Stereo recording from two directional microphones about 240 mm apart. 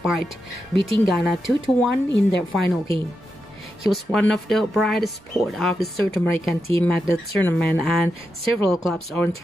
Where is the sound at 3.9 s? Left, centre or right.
Centre.